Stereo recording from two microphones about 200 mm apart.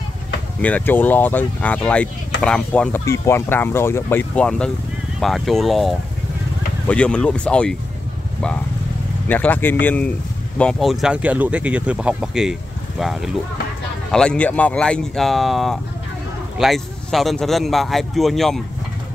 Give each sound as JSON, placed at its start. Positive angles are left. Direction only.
{"t": 0.6, "sound": "a man's voice", "side_deg": 5}
{"t": 9.3, "sound": "a man's voice", "side_deg": 10}